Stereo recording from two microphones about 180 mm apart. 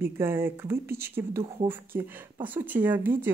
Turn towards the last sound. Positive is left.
turn(degrees=-10)  # may be behind; listen again after turning